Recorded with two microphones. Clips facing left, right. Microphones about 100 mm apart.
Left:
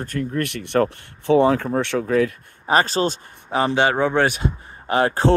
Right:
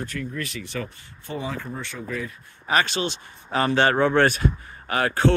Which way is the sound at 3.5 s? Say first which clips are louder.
Left 2 dB; 15° left (ahead or behind).